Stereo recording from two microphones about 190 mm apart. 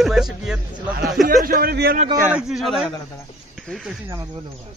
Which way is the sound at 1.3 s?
50° right (ahead or behind).